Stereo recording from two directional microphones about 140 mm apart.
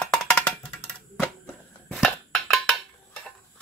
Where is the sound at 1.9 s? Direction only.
Centre (ahead or behind).